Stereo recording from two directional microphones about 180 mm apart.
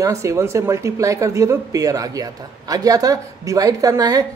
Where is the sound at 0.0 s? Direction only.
15° right (ahead or behind).